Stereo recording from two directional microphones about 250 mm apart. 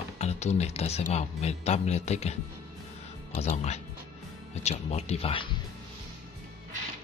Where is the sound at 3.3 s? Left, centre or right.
Left.